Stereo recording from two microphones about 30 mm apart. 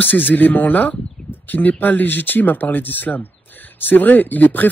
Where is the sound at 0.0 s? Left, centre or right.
Left.